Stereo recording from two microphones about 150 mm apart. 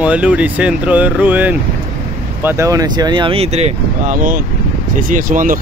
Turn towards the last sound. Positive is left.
turn(degrees=-65)  # may be behind; listen again after turning